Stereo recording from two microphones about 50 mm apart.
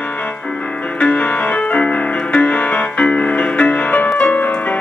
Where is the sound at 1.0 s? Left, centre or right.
Left.